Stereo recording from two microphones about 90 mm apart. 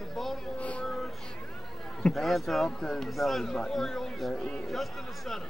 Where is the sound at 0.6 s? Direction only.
15° left (ahead or behind).